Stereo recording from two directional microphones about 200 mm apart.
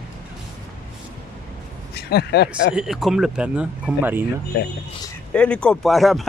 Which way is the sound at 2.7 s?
Centre (ahead or behind).